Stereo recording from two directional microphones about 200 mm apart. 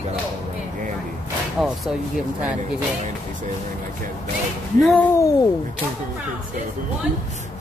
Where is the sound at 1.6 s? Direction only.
Centre (ahead or behind).